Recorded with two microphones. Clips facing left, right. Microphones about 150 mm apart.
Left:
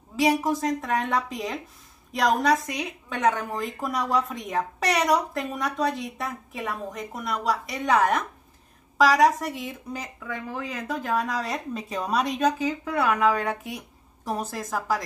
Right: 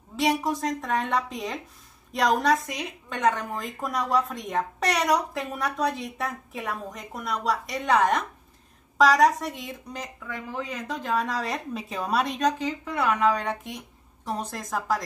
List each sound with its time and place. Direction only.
0.1 s a woman's voice: 5° left (ahead or behind)